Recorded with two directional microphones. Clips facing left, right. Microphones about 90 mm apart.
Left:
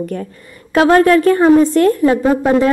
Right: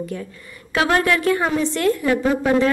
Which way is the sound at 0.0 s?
45° left (ahead or behind).